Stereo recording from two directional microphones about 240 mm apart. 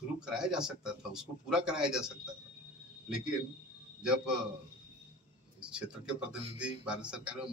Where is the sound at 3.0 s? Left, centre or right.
Centre.